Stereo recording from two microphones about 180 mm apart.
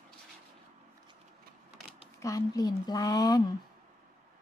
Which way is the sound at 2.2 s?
20° left (ahead or behind).